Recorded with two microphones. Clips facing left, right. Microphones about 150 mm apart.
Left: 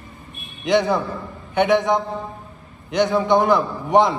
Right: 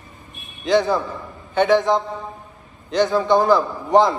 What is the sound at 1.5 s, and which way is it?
A man's voice, 20° left (ahead or behind).